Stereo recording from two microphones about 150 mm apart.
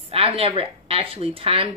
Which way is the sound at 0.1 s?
40° right (ahead or behind).